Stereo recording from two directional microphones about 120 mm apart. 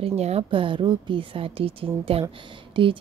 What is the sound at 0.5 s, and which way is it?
Speech, 45° right (ahead or behind).